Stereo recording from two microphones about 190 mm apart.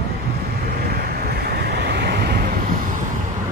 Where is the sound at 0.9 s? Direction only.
55° right (ahead or behind).